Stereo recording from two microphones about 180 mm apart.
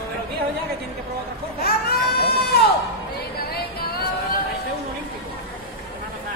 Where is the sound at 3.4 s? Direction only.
60° left (ahead or behind).